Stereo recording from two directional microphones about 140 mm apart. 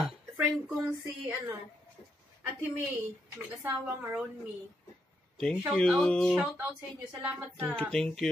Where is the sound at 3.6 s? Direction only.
15° right (ahead or behind).